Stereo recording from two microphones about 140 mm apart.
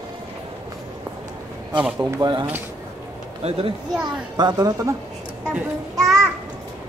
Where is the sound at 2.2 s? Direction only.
30° right (ahead or behind).